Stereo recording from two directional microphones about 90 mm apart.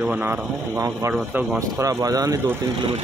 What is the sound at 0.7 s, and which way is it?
Speech, 35° right (ahead or behind).